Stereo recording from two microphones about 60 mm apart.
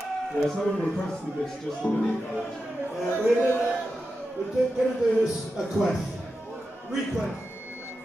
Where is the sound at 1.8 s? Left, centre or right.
Left.